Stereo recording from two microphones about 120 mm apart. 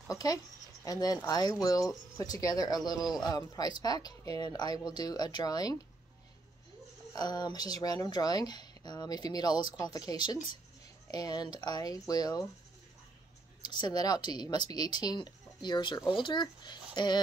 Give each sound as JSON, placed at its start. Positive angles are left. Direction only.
{"t": 0.1, "sound": "speech", "side_deg": 30}
{"t": 7.2, "sound": "speech", "side_deg": 35}
{"t": 13.6, "sound": "speech", "side_deg": 35}